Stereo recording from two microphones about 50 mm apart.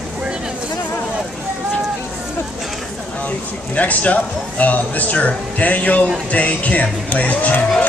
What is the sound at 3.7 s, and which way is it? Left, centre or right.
Speech, left.